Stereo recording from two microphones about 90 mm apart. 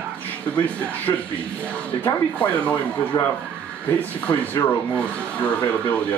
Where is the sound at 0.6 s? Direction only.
20° left (ahead or behind).